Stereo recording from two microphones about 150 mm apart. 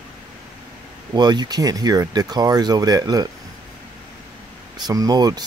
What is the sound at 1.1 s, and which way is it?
Speech, 30° right (ahead or behind).